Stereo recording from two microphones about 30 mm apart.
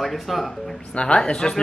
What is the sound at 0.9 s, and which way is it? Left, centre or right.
Speech, left.